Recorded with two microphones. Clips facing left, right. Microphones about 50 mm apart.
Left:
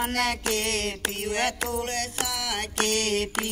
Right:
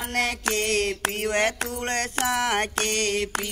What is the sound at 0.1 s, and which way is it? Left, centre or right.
Mantra, right.